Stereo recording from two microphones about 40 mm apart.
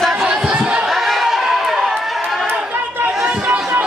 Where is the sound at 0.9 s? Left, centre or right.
Centre.